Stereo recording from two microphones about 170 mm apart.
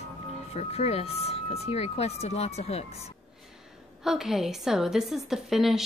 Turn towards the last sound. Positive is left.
turn(degrees=0)  # may be behind; listen again after turning